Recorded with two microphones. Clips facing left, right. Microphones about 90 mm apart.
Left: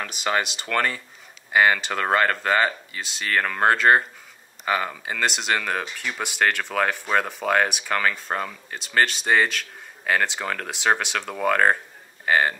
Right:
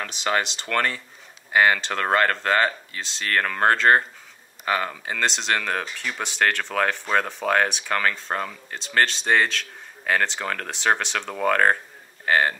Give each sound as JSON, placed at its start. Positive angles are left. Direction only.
{"t": 0.0, "sound": "speech", "side_deg": 5}